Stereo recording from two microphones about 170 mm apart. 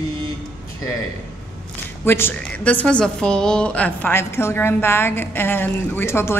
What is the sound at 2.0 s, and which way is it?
A woman's voice, 15° left (ahead or behind).